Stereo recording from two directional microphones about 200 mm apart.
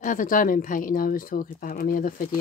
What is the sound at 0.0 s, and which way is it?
A woman's voice, 40° left (ahead or behind).